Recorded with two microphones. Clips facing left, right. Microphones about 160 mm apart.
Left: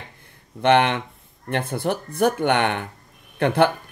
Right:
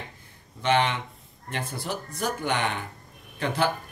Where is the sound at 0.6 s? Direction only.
60° left (ahead or behind).